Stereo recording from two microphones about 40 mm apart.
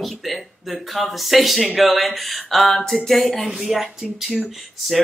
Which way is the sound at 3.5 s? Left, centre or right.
Centre.